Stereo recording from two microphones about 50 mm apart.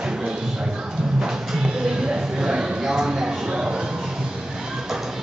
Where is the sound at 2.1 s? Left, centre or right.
Centre.